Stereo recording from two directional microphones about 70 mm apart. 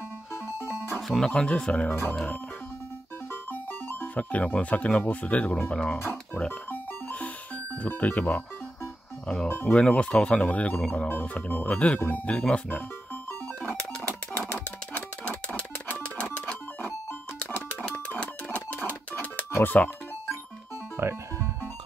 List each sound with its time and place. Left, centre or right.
0.3 s music: left
1.2 s speech: centre
1.9 s speech: left
4.0 s speech: left
5.9 s speech: left
6.5 s music: left
9.7 s speech: centre
15.0 s music: centre
21.0 s music: right